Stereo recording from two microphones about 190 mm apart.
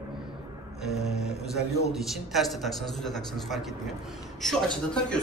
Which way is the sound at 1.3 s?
35° left (ahead or behind).